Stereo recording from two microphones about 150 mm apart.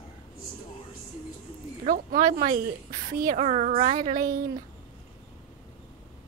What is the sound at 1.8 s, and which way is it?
A woman's voice, 65° right (ahead or behind).